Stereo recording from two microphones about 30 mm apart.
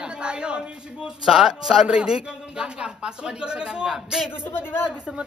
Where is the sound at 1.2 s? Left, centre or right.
Right.